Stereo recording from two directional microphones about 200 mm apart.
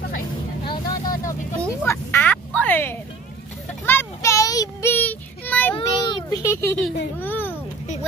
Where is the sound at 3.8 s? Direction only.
10° left (ahead or behind).